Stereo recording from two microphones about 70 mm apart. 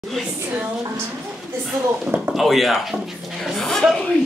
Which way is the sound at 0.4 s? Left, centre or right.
Right.